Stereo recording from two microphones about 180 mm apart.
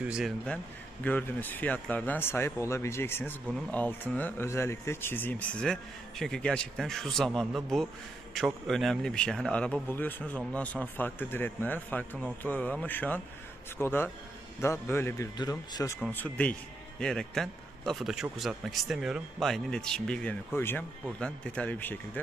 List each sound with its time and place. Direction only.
0.0 s a man's voice: 5° right (ahead or behind)
1.0 s a man's voice: 10° left (ahead or behind)